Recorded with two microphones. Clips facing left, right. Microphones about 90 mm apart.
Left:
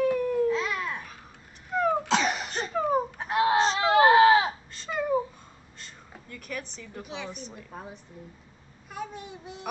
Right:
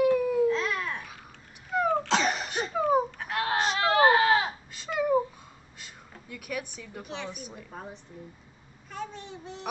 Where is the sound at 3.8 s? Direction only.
15° left (ahead or behind).